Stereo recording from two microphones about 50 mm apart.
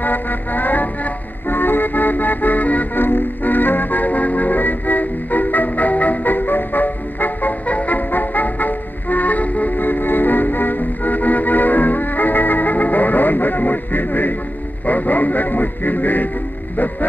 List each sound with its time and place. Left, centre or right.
0.0 s music: left